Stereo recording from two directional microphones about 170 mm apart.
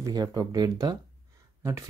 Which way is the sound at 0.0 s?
20° right (ahead or behind).